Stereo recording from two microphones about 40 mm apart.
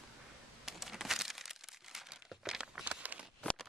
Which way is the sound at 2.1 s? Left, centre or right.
Centre.